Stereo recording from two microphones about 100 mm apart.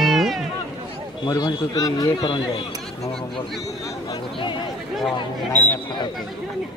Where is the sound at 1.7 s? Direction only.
35° left (ahead or behind).